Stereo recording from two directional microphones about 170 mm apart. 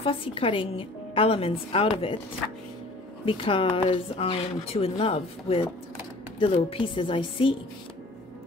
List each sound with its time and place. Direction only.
0.0 s speech: 35° left (ahead or behind)
3.3 s speech: 30° left (ahead or behind)